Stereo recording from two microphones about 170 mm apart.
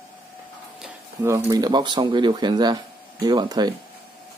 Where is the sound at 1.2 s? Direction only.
15° right (ahead or behind).